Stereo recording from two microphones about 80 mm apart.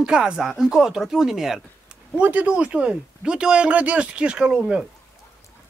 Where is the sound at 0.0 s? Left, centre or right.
Centre.